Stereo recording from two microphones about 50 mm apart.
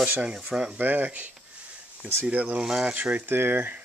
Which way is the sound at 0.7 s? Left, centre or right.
Right.